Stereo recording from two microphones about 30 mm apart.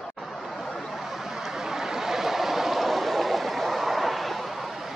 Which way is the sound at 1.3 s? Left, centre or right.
Centre.